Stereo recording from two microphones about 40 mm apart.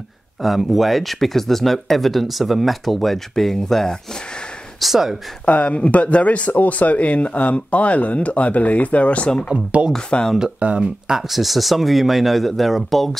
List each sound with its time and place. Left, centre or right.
0.4 s speech: centre
4.7 s speech: centre
5.4 s speech: left
9.5 s speech: right
9.9 s speech: left
10.8 s speech: centre